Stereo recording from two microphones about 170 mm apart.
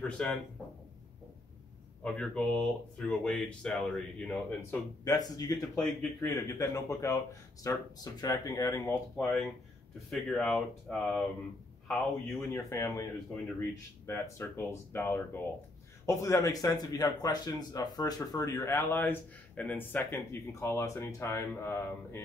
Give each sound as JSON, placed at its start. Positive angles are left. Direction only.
{"t": 0.2, "sound": "speech", "side_deg": 5}
{"t": 2.0, "sound": "speech", "side_deg": 5}
{"t": 5.0, "sound": "a man's voice", "side_deg": 20}
{"t": 10.0, "sound": "speech", "side_deg": 5}
{"t": 12.5, "sound": "a man's voice", "side_deg": 20}